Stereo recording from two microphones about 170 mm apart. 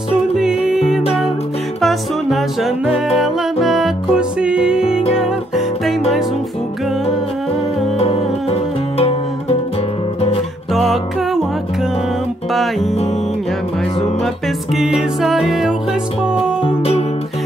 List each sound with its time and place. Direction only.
0.7 s music: 5° right (ahead or behind)
8.0 s music: 35° left (ahead or behind)
10.7 s music: centre (ahead or behind)
14.2 s music: centre (ahead or behind)
16.6 s music: 35° left (ahead or behind)